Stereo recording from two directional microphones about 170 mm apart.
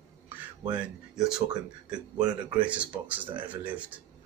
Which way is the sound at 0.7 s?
5° right (ahead or behind).